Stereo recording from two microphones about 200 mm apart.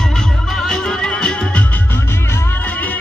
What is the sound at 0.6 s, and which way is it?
Music, 5° left (ahead or behind).